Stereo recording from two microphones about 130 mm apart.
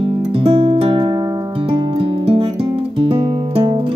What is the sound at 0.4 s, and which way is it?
Music, 45° right (ahead or behind).